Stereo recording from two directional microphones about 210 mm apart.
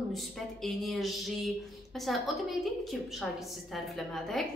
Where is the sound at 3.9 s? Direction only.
Centre (ahead or behind).